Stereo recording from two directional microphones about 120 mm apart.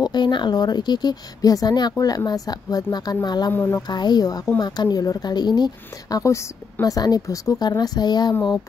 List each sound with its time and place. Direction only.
0.0 s speech: 40° left (ahead or behind)
3.5 s speech: 20° left (ahead or behind)
3.8 s speech: 35° left (ahead or behind)